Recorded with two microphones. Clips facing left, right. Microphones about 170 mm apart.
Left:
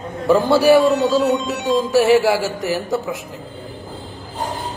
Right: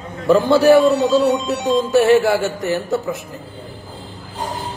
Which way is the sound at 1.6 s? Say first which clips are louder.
Right 1 dB; 10° left (ahead or behind).